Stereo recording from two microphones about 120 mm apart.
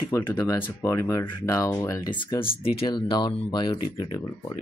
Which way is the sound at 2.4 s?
50° left (ahead or behind).